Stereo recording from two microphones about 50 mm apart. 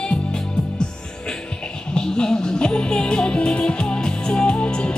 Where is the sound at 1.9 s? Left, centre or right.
Centre.